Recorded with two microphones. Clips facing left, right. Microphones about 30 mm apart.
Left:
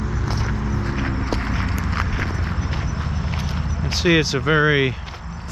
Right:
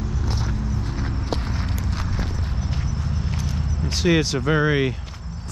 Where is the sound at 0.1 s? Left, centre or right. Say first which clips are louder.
Left 3 dB; centre.